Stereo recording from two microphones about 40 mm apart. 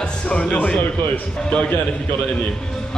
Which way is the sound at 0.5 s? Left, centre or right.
Left.